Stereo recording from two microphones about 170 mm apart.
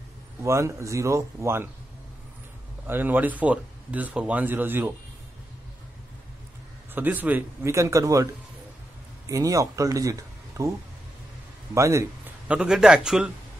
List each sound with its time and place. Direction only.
0.4 s speech: 15° right (ahead or behind)
2.9 s speech: 10° right (ahead or behind)
6.9 s speech: 10° right (ahead or behind)
11.7 s a sound: 15° right (ahead or behind)
12.5 s a man's voice: 5° right (ahead or behind)